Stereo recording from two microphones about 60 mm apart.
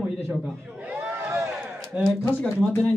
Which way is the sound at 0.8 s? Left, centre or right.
Right.